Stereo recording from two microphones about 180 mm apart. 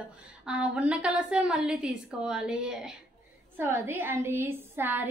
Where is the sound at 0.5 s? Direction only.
5° right (ahead or behind).